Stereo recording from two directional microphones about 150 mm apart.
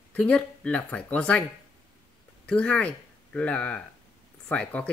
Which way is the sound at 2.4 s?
10° left (ahead or behind).